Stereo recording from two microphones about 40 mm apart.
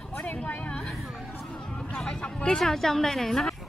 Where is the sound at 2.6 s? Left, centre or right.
Centre.